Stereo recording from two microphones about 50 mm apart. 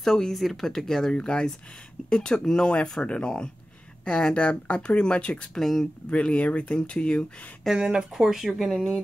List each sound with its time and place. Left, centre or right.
0.0 s speech: centre
1.1 s speech: centre
5.6 s speech: centre
6.0 s speech: left
7.7 s speech: centre
8.4 s speech: centre